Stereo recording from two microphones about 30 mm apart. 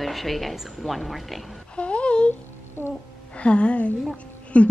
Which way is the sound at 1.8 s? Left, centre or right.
Left.